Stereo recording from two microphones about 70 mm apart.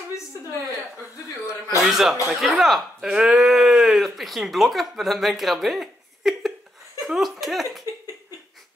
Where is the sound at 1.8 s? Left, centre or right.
Centre.